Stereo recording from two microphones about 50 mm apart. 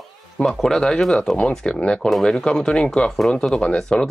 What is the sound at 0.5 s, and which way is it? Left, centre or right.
Speech, centre.